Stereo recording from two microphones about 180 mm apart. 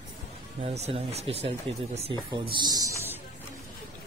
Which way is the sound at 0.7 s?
35° right (ahead or behind).